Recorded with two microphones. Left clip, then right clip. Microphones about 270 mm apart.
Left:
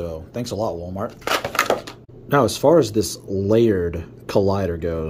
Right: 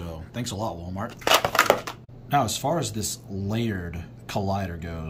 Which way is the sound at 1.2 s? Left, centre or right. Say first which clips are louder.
Right 2 dB; right.